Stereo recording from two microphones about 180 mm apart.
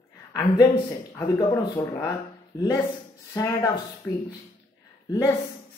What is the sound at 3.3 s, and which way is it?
Speech, 20° left (ahead or behind).